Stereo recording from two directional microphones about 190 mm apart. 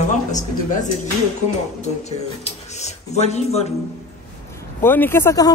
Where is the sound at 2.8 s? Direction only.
35° left (ahead or behind).